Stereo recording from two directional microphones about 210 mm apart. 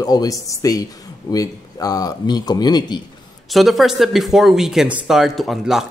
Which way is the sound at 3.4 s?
Centre (ahead or behind).